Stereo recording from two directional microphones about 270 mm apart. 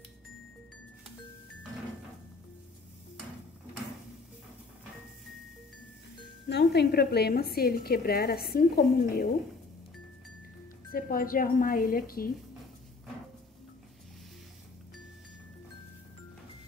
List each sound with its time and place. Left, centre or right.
6.5 s a woman's voice: left
10.9 s a woman's voice: left